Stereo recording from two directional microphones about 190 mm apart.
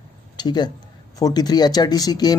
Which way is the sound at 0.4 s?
20° left (ahead or behind).